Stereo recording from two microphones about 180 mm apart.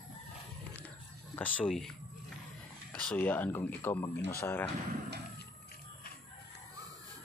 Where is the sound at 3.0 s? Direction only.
10° left (ahead or behind).